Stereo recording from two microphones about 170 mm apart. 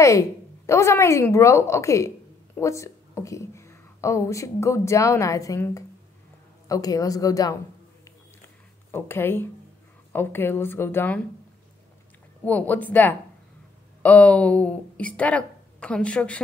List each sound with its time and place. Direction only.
0.7 s a woman's voice: 15° left (ahead or behind)
8.9 s speech: 15° left (ahead or behind)
12.4 s speech: 10° left (ahead or behind)